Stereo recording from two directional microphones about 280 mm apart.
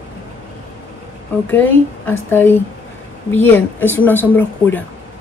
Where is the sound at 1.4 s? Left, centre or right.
Centre.